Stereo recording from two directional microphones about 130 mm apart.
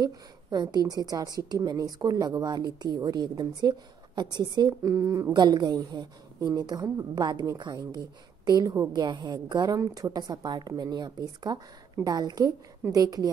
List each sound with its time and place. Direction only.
0.0 s a woman's voice: 30° right (ahead or behind)